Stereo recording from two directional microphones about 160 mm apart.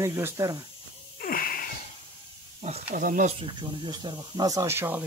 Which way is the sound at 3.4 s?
30° right (ahead or behind).